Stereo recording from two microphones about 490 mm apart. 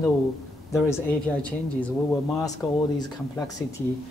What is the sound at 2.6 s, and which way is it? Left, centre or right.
Speech, centre.